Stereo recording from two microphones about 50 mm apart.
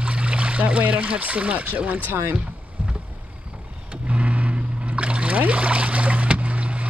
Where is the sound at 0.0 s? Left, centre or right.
Right.